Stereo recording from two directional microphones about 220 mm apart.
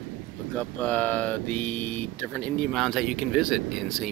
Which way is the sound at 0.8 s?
5° left (ahead or behind).